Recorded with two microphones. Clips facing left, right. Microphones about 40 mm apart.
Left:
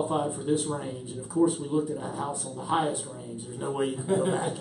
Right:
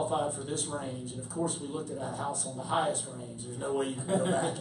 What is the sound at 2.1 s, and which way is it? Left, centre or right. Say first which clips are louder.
A woman's voice: left 2 dB; left.